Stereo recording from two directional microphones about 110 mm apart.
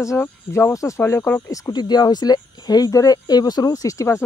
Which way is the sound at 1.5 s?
35° left (ahead or behind).